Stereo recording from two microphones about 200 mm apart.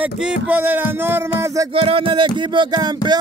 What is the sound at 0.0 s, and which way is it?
Speech, 5° right (ahead or behind).